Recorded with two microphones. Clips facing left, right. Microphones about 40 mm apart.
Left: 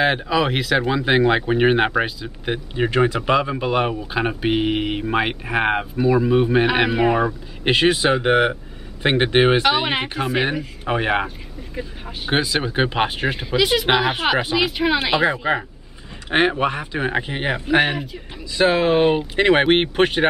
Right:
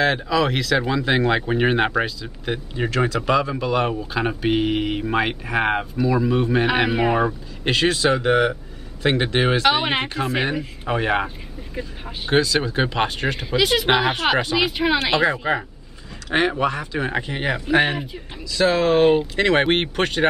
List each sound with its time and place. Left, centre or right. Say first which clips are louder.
0.0 s speech: left 1 dB; centre
7.6 s speech: left 2 dB; centre
9.7 s speech: even; centre
10.0 s speech: left 1 dB; centre
16.3 s speech: left 2 dB; left